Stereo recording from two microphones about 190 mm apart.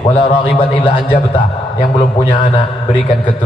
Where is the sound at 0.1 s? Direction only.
25° left (ahead or behind).